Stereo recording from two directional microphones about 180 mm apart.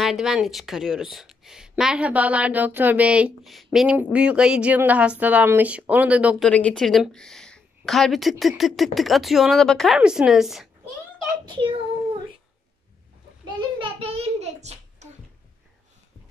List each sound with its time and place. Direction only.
0.0 s speech: centre (ahead or behind)
6.4 s speech: 5° left (ahead or behind)
13.5 s a sound: 25° right (ahead or behind)